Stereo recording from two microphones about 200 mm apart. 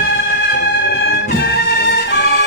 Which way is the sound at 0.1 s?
50° left (ahead or behind).